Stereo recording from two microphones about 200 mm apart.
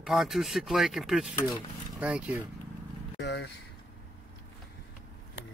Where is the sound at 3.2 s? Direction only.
60° left (ahead or behind).